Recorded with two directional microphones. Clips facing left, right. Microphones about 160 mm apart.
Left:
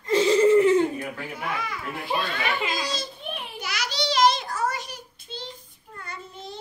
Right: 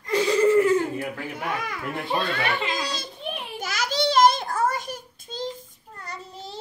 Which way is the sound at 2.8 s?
60° right (ahead or behind).